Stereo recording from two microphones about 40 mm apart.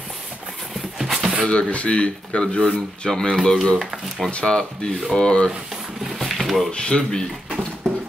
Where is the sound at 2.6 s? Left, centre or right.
Centre.